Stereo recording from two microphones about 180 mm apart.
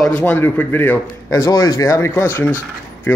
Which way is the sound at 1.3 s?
20° left (ahead or behind).